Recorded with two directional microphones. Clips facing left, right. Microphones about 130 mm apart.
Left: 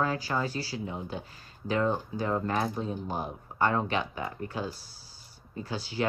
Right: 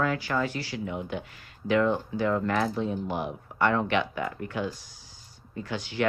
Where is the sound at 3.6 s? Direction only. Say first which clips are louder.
Right 3 dB; 35° left (ahead or behind).